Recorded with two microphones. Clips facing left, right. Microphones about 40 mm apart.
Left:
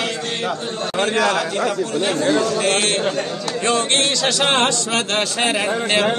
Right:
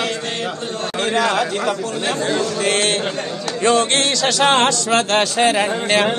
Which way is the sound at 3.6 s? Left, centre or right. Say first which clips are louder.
Right 3 dB; right.